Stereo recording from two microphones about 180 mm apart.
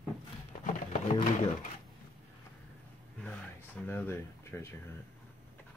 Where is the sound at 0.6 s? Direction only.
40° left (ahead or behind).